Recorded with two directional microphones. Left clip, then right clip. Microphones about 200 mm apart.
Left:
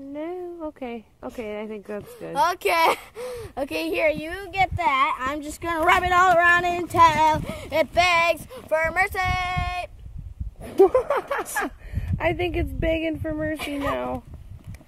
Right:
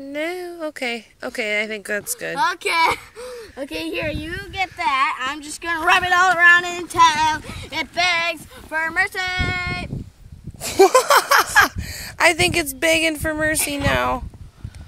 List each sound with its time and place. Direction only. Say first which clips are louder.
0.1 s speech: right 6 dB; 15° right (ahead or behind)
2.3 s speech: right 1 dB; 35° left (ahead or behind)
10.6 s speech: right 4 dB; 10° right (ahead or behind)